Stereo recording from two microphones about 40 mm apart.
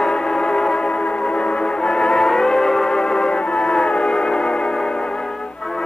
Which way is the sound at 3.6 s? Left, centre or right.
Centre.